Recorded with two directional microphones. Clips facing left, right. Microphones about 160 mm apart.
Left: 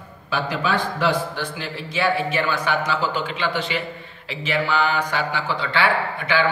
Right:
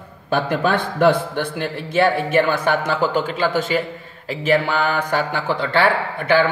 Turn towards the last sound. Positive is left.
turn(degrees=-50)  # may be behind; listen again after turning